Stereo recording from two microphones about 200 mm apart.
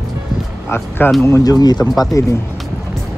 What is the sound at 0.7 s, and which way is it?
Speech, 10° left (ahead or behind).